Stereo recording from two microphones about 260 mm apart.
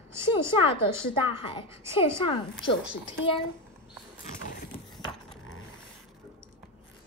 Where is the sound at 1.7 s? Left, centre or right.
Centre.